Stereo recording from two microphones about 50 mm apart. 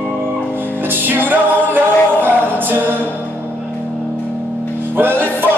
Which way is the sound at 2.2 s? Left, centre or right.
Right.